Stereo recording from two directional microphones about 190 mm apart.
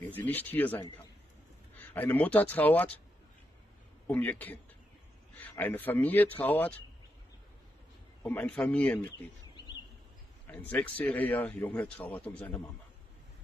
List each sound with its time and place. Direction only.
0.1 s a man's voice: 10° left (ahead or behind)
4.1 s a man's voice: 10° left (ahead or behind)
8.2 s a man's voice: 10° left (ahead or behind)
10.4 s a man's voice: 10° left (ahead or behind)